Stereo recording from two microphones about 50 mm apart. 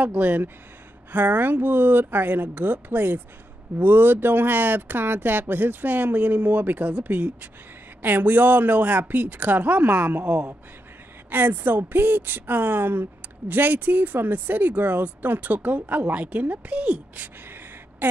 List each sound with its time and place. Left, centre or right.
0.0 s speech: right